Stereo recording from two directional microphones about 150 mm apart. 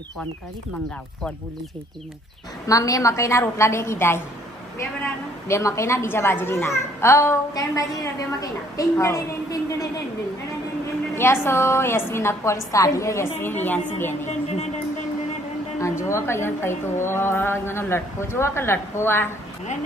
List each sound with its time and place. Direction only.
2.7 s a woman's voice: 20° left (ahead or behind)
11.1 s a woman's voice: 15° left (ahead or behind)
15.8 s a woman's voice: 20° left (ahead or behind)